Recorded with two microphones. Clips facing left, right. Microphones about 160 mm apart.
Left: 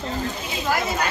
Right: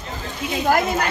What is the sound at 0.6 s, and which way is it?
Speech, 55° right (ahead or behind).